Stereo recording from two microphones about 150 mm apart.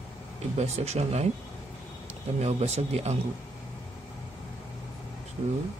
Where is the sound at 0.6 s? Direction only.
45° right (ahead or behind).